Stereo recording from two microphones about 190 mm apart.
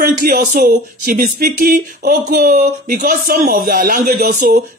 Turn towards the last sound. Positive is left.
turn(degrees=-40)  # may be behind; listen again after turning